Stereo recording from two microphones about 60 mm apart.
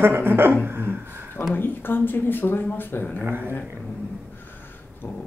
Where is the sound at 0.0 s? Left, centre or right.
Right.